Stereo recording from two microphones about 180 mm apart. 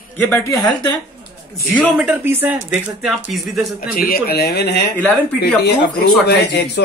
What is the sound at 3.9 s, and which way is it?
Speech, 55° left (ahead or behind).